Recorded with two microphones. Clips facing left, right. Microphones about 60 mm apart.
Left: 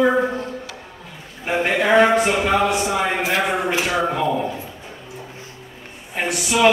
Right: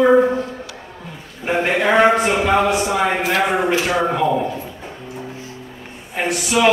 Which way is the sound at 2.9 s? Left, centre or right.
Centre.